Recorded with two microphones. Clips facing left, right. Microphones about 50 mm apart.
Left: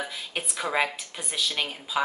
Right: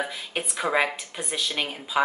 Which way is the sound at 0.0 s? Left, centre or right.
Centre.